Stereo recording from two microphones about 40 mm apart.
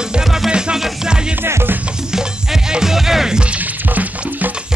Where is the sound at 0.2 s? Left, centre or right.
Centre.